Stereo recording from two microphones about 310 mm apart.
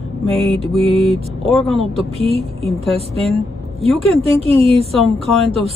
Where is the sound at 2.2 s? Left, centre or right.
Centre.